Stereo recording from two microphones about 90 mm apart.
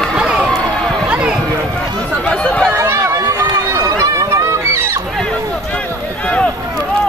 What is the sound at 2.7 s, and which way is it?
Run, 35° right (ahead or behind).